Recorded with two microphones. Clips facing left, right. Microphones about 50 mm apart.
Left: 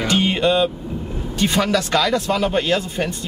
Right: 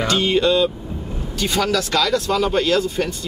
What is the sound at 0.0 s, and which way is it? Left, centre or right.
Speech, left.